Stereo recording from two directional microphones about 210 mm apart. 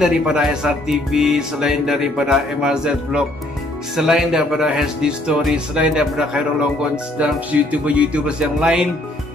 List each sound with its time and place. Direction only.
0.0 s speech: 5° right (ahead or behind)